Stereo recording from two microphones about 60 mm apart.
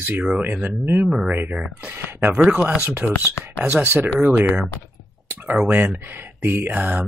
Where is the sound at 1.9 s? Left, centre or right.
Right.